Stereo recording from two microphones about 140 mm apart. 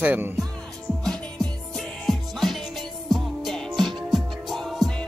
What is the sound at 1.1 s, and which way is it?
Music, 5° left (ahead or behind).